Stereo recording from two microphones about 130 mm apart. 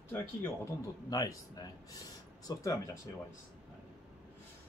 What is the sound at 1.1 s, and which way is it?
Speech, 30° left (ahead or behind).